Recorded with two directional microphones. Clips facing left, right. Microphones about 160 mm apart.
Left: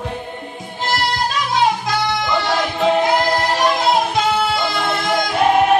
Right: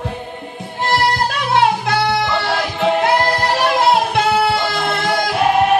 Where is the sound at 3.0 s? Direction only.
65° right (ahead or behind).